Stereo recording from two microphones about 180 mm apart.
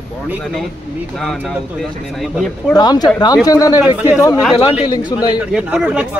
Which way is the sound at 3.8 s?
10° right (ahead or behind).